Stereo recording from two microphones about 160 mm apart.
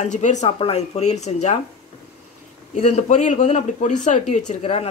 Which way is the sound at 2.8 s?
45° left (ahead or behind).